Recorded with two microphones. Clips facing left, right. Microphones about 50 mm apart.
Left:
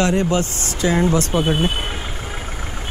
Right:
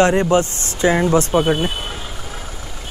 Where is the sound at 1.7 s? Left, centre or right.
Left.